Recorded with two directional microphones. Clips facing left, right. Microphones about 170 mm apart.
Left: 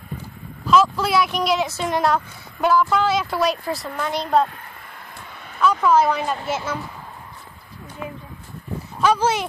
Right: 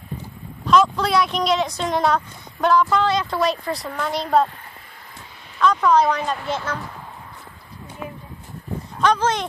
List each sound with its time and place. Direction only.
0.7 s speech: 5° left (ahead or behind)
5.1 s a sound: 60° left (ahead or behind)
5.6 s speech: 5° left (ahead or behind)
9.0 s speech: 10° left (ahead or behind)